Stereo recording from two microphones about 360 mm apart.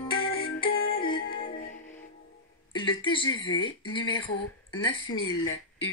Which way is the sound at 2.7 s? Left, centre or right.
Centre.